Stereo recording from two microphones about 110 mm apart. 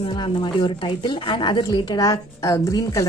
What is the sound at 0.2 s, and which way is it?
A woman's voice, 45° left (ahead or behind).